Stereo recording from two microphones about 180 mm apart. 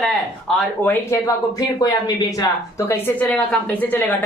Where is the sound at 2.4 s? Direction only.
15° left (ahead or behind).